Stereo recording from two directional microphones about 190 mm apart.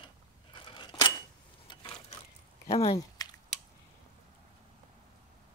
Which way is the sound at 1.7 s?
25° left (ahead or behind).